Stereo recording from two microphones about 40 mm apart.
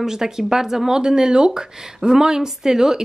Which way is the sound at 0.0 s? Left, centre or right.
Centre.